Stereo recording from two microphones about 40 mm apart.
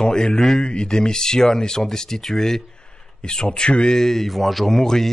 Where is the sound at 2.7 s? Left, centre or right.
Left.